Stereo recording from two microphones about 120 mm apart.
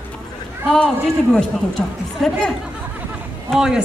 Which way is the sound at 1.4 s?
5° left (ahead or behind).